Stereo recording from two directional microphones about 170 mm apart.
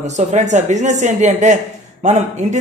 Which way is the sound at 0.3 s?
45° right (ahead or behind).